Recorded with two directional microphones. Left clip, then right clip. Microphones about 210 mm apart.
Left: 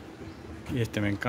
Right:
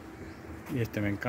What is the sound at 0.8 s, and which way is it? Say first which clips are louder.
Speech: left 3 dB; 5° left (ahead or behind).